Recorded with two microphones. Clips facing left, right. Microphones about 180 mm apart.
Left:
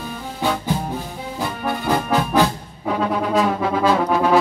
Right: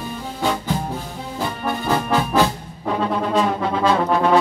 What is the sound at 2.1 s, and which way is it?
Music, 15° left (ahead or behind).